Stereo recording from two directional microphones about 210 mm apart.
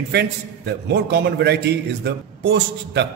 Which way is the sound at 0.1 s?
50° right (ahead or behind).